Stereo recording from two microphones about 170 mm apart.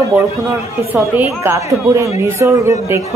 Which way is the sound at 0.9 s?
10° right (ahead or behind).